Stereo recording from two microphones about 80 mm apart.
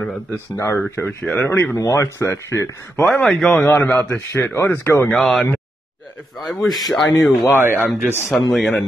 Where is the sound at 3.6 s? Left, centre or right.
Left.